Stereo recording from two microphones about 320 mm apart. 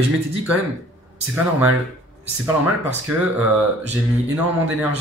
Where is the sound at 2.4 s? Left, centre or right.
Centre.